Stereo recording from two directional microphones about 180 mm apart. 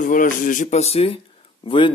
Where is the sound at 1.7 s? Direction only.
30° left (ahead or behind).